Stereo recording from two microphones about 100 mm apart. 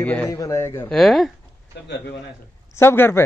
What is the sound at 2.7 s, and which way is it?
Speech, 20° left (ahead or behind).